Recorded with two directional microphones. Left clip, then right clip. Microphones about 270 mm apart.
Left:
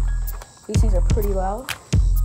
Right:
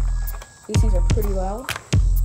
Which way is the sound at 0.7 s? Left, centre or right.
Left.